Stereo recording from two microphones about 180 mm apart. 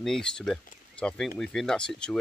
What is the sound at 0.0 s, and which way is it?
Speech, 5° left (ahead or behind).